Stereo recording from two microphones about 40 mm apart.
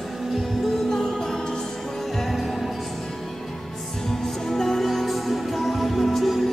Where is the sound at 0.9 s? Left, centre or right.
Centre.